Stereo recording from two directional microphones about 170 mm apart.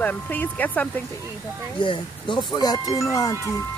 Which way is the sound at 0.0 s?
10° left (ahead or behind).